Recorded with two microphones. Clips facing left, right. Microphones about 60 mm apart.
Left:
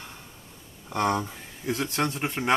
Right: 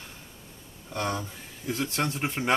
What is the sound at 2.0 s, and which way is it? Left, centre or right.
Speech, centre.